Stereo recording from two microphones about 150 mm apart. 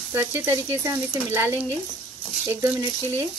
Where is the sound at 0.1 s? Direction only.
15° right (ahead or behind).